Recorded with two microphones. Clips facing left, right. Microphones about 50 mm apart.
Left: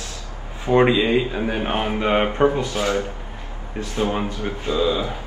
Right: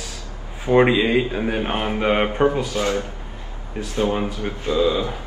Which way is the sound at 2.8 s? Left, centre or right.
Centre.